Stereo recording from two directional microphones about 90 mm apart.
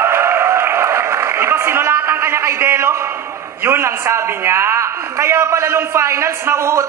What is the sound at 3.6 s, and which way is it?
A man's voice, 25° right (ahead or behind).